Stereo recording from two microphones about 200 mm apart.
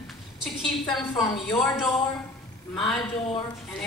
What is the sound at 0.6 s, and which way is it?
Speech, centre (ahead or behind).